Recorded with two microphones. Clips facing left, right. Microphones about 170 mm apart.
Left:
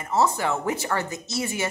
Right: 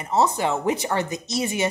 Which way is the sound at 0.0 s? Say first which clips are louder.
Right 2 dB; 20° right (ahead or behind).